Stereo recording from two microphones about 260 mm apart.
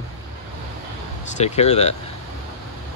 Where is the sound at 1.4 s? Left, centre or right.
Left.